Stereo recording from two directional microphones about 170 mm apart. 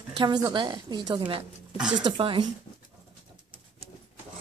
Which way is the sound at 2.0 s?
30° right (ahead or behind).